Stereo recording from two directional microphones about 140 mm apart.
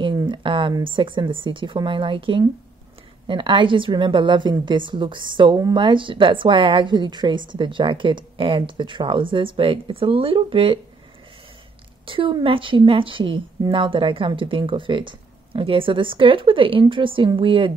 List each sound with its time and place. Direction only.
0.0 s a woman's voice: 35° right (ahead or behind)
12.1 s a woman's voice: 40° right (ahead or behind)